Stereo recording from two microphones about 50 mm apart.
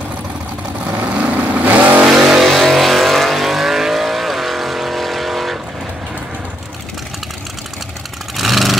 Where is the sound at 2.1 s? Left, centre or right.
Centre.